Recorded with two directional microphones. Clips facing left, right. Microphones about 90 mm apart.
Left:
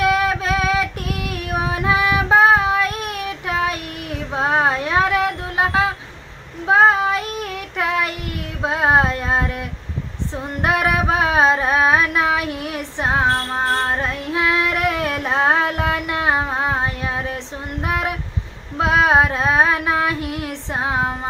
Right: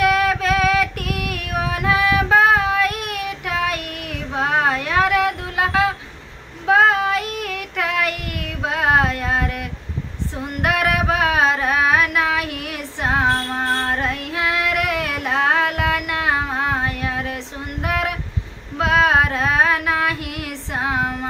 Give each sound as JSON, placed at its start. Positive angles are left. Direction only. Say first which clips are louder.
{"t": 0.0, "sound": "female singing", "louder": "right 1 dB", "side_deg": 20}
{"t": 6.7, "sound": "child singing", "louder": "left 1 dB", "side_deg": 25}
{"t": 8.6, "sound": "music", "louder": "left 1 dB", "side_deg": 25}
{"t": 10.6, "sound": "a sound", "louder": "left 1 dB", "side_deg": 25}
{"t": 18.8, "sound": "child singing", "louder": "left 1 dB", "side_deg": 25}